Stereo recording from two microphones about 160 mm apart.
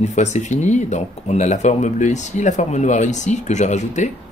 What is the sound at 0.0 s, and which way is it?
Speech, 45° left (ahead or behind).